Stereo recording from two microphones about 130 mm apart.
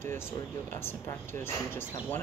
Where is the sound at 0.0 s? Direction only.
20° left (ahead or behind).